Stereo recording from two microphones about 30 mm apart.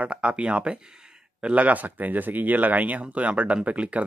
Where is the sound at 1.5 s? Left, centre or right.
Right.